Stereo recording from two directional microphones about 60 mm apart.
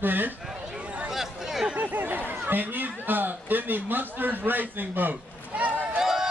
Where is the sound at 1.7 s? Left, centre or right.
Right.